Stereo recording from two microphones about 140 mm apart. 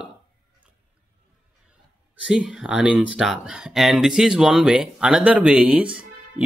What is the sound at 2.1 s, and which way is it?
Speech, 5° right (ahead or behind).